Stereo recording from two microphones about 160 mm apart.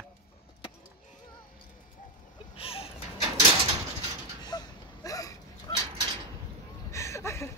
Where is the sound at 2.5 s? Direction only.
35° left (ahead or behind).